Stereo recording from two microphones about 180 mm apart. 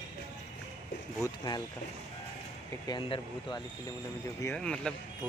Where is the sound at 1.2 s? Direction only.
20° left (ahead or behind).